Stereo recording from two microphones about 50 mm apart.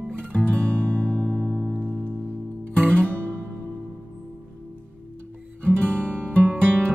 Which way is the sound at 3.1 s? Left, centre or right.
Right.